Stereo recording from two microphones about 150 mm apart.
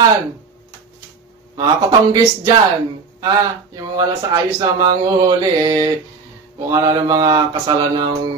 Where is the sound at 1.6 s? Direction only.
25° right (ahead or behind).